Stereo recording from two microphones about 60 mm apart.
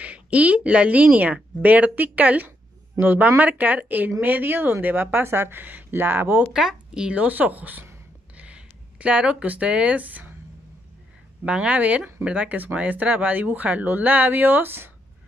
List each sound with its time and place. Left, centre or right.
0.0 s a woman's voice: right
6.5 s speech: centre
7.2 s a woman's voice: right
11.4 s a woman's voice: right